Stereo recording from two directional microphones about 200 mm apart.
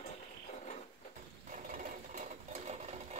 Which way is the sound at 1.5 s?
40° right (ahead or behind).